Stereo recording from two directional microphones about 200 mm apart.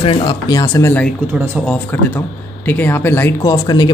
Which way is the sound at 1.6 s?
10° left (ahead or behind).